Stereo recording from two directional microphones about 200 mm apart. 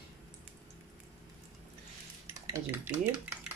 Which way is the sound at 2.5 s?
10° right (ahead or behind).